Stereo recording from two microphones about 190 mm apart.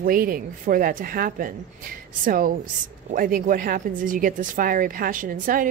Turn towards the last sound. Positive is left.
turn(degrees=-45)  # may be behind; listen again after turning